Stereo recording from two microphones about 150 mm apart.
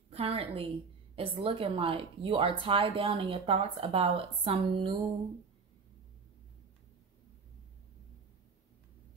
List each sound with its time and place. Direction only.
0.1 s a woman's voice: 40° right (ahead or behind)